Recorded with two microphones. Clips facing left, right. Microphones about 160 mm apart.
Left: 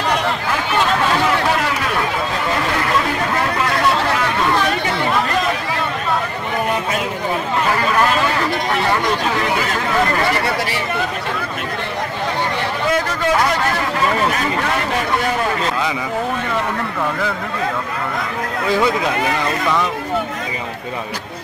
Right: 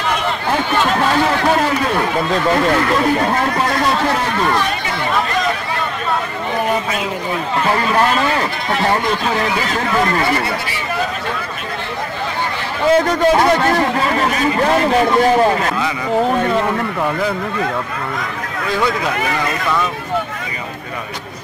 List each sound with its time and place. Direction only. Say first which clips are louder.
3.3 s a man's voice: right 2 dB; 35° right (ahead or behind)
12.9 s a man's voice: right 7 dB; 30° right (ahead or behind)